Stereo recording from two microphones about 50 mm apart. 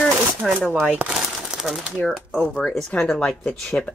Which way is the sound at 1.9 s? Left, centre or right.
Centre.